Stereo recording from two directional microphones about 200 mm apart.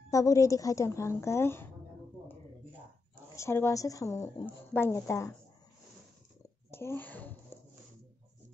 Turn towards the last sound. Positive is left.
turn(degrees=10)  # may be behind; listen again after turning